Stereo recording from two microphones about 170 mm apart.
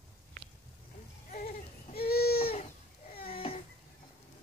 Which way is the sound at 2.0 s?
65° left (ahead or behind).